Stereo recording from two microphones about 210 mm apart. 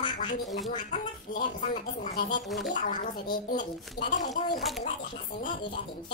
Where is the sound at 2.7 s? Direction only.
40° left (ahead or behind).